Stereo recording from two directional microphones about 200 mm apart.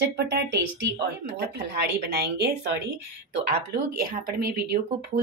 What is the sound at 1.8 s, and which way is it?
Speech, 55° right (ahead or behind).